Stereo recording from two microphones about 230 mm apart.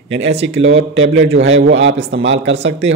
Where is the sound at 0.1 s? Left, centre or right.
Right.